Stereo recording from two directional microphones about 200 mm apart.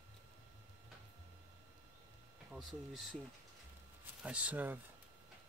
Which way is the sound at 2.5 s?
Centre (ahead or behind).